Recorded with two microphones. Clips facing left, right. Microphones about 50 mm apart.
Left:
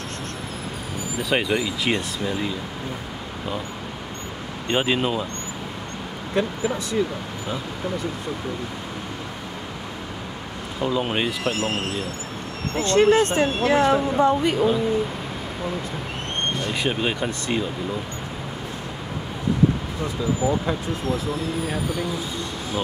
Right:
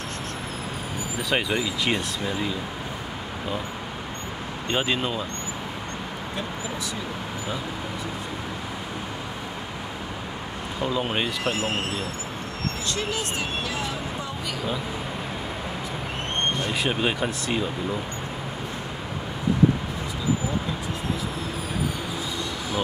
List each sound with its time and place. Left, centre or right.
1.3 s speech: centre
4.6 s speech: centre
10.8 s speech: centre
12.8 s speech: left
16.8 s speech: centre